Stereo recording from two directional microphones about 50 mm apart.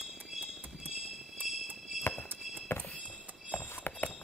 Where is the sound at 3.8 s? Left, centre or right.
Left.